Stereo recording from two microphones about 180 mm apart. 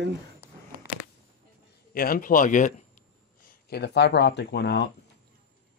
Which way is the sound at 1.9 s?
55° left (ahead or behind).